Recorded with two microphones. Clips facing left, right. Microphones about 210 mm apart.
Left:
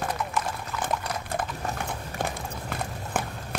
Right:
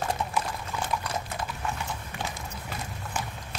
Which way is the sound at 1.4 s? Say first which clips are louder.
Left 2 dB; 50° left (ahead or behind).